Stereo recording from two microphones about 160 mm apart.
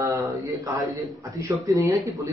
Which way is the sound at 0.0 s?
20° right (ahead or behind).